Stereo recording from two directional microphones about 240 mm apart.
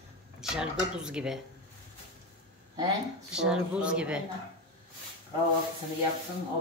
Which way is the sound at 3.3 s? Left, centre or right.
Centre.